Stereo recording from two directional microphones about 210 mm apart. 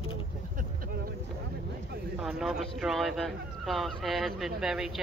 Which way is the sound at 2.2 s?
Centre (ahead or behind).